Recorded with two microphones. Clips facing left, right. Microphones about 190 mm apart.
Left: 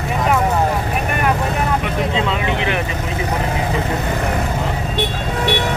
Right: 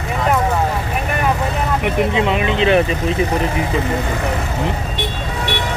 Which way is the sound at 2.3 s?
20° right (ahead or behind).